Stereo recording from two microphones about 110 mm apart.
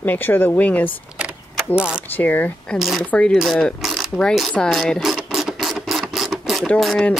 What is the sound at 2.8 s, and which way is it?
Speech, centre (ahead or behind).